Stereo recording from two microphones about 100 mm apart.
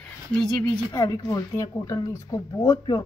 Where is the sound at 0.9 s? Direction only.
35° left (ahead or behind).